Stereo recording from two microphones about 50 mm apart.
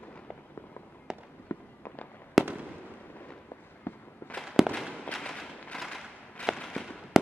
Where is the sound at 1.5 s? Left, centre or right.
Left.